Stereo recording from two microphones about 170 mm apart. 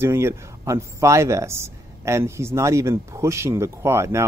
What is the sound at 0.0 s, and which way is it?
Speech, 15° right (ahead or behind).